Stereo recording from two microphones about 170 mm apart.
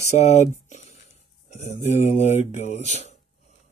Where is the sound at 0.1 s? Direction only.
40° left (ahead or behind).